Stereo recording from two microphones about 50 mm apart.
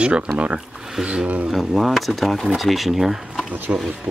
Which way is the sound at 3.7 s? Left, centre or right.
Right.